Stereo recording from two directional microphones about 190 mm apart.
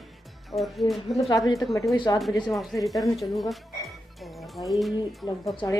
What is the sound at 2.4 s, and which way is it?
A woman's voice, centre (ahead or behind).